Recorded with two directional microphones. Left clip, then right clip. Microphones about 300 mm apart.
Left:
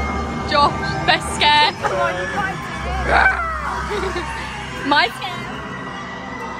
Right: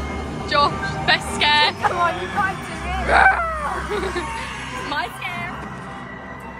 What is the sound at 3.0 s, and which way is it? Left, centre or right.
Speech, centre.